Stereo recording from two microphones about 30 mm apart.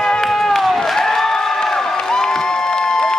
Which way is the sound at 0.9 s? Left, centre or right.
Centre.